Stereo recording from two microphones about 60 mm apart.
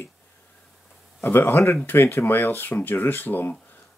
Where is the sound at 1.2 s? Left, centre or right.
Left.